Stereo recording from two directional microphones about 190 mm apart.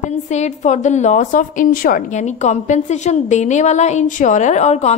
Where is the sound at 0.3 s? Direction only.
35° left (ahead or behind).